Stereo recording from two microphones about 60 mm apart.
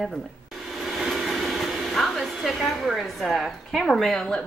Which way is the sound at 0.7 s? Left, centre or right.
Centre.